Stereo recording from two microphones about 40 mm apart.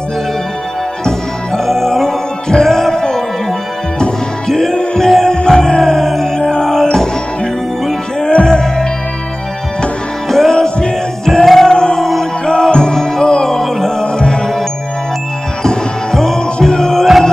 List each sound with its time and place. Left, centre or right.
1.0 s music: centre
8.2 s music: left
10.2 s music: centre
15.6 s music: centre